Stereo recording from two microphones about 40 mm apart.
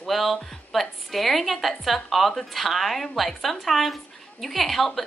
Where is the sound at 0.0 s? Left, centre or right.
Centre.